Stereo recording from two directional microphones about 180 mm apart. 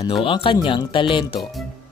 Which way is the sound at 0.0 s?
30° left (ahead or behind).